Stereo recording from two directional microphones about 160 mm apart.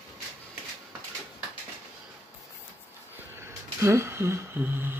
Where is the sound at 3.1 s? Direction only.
15° right (ahead or behind).